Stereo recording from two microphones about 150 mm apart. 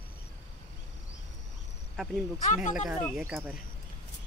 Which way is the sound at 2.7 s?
5° right (ahead or behind).